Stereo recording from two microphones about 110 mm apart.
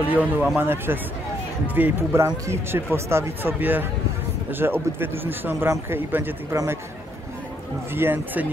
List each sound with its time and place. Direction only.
0.1 s speech: 15° right (ahead or behind)
6.5 s speech: 30° right (ahead or behind)
7.9 s speech: 20° right (ahead or behind)